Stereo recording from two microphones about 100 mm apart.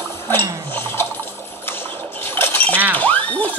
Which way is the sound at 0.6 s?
20° left (ahead or behind).